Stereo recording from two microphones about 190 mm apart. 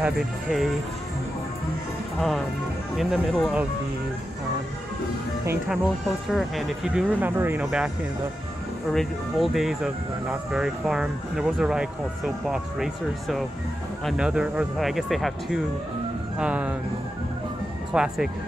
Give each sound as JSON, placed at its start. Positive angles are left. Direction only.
{"t": 0.0, "sound": "speech", "side_deg": 0}
{"t": 2.1, "sound": "speech", "side_deg": 0}
{"t": 5.7, "sound": "speech", "side_deg": 0}
{"t": 8.9, "sound": "speech", "side_deg": 0}
{"t": 17.9, "sound": "speech", "side_deg": -5}